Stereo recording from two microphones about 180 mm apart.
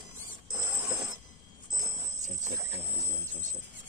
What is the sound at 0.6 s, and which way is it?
Mechanisms, 20° right (ahead or behind).